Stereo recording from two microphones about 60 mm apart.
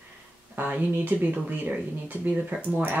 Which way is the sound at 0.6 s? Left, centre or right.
Right.